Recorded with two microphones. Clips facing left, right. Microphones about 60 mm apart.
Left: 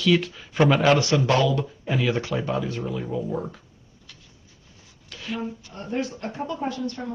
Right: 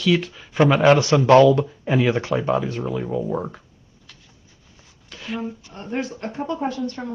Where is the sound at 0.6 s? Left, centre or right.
Centre.